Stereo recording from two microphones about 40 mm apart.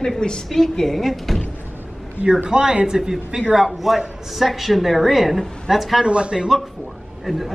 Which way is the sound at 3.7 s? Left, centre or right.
Centre.